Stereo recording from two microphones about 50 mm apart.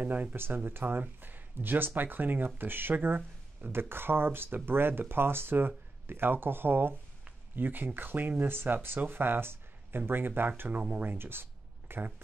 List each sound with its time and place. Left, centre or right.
0.0 s speech: right
1.2 s a sound: right
2.0 s speech: right